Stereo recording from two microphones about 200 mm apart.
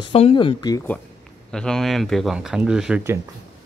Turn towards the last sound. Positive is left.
turn(degrees=-10)  # may be behind; listen again after turning